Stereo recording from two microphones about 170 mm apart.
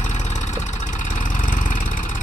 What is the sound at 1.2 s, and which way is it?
Vehicle, 50° left (ahead or behind).